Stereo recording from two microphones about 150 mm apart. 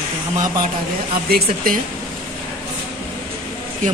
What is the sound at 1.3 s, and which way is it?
Speech, 90° right.